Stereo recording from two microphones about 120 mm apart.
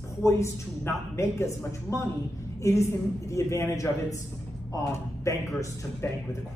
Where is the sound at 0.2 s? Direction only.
20° left (ahead or behind).